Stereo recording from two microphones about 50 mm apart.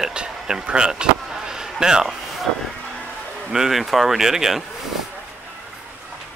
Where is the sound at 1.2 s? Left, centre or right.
Centre.